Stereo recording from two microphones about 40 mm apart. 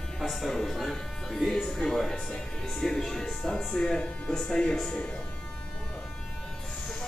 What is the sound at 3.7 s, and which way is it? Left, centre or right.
Electric shaver, centre.